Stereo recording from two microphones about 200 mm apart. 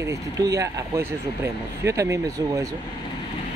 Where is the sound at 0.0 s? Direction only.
15° right (ahead or behind).